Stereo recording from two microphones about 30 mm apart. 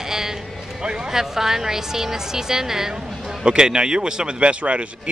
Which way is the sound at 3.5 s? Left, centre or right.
Right.